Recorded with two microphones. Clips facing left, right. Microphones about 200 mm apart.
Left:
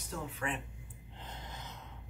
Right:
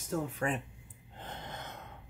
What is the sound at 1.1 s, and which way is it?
Gasp, 60° right (ahead or behind).